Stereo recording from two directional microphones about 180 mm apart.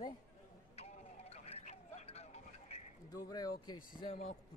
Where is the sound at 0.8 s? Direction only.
35° left (ahead or behind).